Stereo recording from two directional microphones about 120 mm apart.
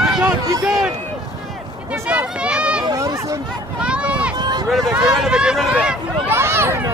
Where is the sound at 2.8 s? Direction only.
30° right (ahead or behind).